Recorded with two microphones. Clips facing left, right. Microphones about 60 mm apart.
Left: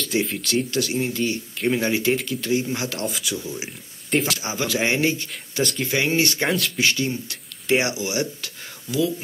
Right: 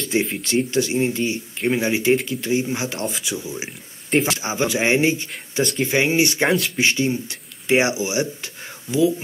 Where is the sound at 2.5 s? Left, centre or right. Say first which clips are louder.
Right 1 dB; right.